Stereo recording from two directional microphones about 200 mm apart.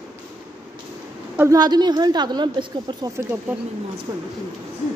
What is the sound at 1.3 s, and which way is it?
A woman's voice, 15° right (ahead or behind).